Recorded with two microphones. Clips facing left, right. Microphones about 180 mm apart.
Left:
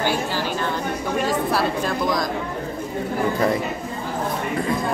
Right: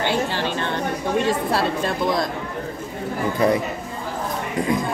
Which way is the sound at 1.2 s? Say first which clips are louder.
Left 3 dB; 25° right (ahead or behind).